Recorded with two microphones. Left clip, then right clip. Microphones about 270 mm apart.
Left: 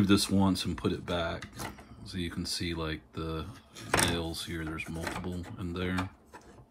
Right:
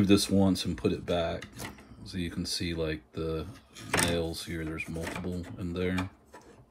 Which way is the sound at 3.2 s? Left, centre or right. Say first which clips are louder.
Right 5 dB; centre.